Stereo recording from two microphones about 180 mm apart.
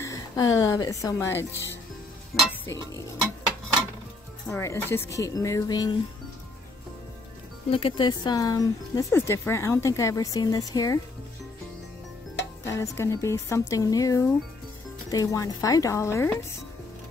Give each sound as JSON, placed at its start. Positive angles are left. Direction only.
{"t": 0.0, "sound": "speech", "side_deg": 20}
{"t": 2.6, "sound": "a sound", "side_deg": 15}
{"t": 4.5, "sound": "speech", "side_deg": 15}
{"t": 7.7, "sound": "speech", "side_deg": 30}
{"t": 12.6, "sound": "speech", "side_deg": 15}